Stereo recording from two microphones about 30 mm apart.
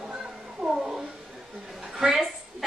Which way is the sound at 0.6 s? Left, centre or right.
Centre.